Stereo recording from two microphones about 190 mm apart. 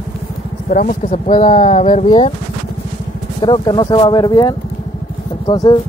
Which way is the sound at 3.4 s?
25° left (ahead or behind).